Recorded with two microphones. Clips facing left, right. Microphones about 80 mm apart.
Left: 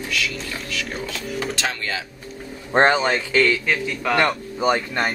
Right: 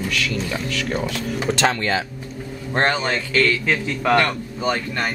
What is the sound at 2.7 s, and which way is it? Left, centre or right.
Speech, centre.